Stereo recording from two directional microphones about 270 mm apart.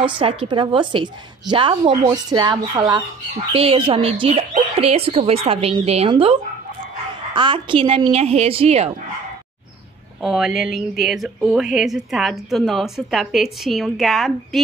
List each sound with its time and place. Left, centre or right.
0.0 s a woman's voice: centre
10.2 s speech: centre